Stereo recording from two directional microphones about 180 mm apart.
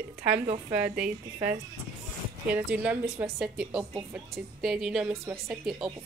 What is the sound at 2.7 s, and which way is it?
A woman's voice, 10° right (ahead or behind).